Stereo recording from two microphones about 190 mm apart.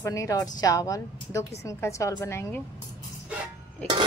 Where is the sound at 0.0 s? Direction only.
15° left (ahead or behind).